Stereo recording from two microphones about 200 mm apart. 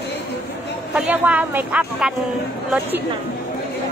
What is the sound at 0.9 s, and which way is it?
Speech, 5° right (ahead or behind).